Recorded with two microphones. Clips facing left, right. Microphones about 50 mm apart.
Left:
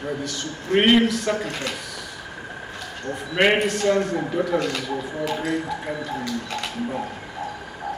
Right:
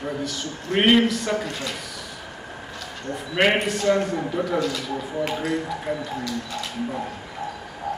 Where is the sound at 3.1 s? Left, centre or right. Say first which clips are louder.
Left 1 dB; centre.